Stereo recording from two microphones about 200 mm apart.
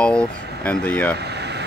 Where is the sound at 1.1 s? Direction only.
55° right (ahead or behind).